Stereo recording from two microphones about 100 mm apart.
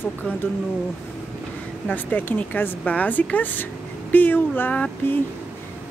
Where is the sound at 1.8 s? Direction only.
20° left (ahead or behind).